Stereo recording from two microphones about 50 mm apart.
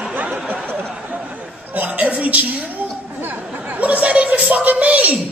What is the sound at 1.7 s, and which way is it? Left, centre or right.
Music, right.